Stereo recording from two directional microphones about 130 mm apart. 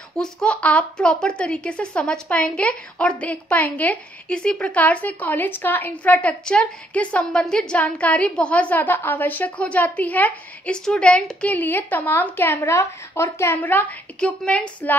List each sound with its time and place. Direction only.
0.1 s speech: 5° left (ahead or behind)